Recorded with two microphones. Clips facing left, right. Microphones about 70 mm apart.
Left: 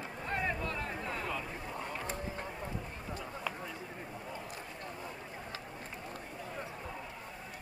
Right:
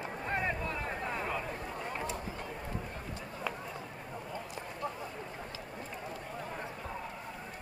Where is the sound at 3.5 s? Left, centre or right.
Centre.